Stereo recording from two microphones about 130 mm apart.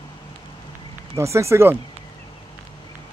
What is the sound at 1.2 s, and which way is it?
Speech, 20° right (ahead or behind).